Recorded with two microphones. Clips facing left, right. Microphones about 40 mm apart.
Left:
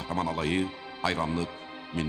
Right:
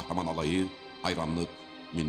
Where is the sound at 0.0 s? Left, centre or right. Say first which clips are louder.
Left 2 dB; centre.